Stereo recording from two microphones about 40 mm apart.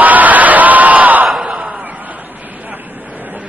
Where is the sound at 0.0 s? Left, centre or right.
Right.